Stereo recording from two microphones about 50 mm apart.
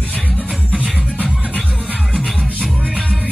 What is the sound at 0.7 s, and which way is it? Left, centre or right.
Music, right.